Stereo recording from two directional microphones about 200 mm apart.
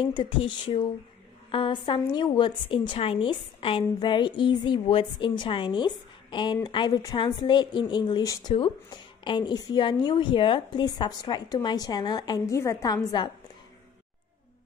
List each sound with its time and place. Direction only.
0.0 s a woman's voice: 25° left (ahead or behind)